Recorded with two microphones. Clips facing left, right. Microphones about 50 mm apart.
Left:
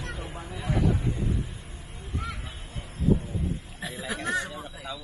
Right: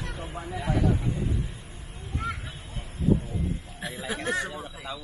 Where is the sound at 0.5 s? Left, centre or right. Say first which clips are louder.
Right 1 dB; right.